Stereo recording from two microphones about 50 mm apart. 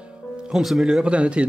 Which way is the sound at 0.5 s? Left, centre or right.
Centre.